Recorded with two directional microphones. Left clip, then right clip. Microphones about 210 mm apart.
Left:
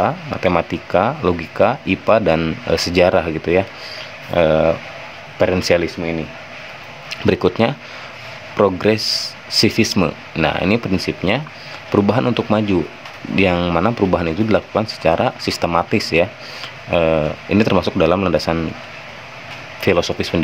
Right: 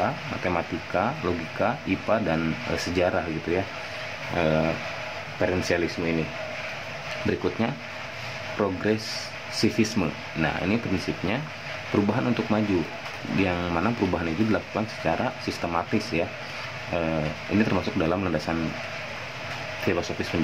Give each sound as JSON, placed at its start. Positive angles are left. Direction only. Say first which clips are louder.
{"t": 0.0, "sound": "speech", "louder": "left 9 dB", "side_deg": 45}
{"t": 7.2, "sound": "speech", "louder": "left 12 dB", "side_deg": 50}
{"t": 19.9, "sound": "speech", "louder": "left 12 dB", "side_deg": 50}